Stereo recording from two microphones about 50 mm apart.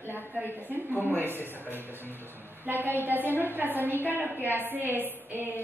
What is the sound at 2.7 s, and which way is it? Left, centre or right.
A woman's voice, right.